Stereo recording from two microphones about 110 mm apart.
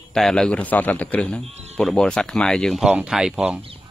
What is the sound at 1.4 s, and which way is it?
Speech, 80° right.